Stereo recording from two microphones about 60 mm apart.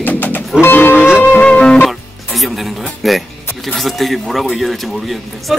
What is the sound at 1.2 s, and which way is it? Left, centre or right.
Speech, left.